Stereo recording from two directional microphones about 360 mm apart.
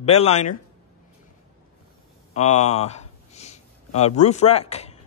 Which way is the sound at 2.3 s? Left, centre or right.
Centre.